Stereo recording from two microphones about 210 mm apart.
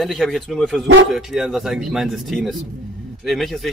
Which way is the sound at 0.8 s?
65° right (ahead or behind).